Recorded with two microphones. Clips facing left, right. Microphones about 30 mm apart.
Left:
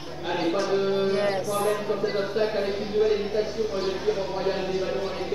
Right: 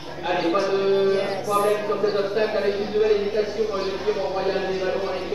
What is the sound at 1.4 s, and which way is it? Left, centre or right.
Speech, right.